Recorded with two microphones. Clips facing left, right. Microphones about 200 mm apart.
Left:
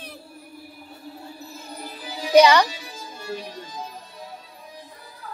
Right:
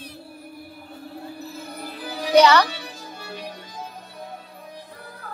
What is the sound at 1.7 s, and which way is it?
Music, 60° right (ahead or behind).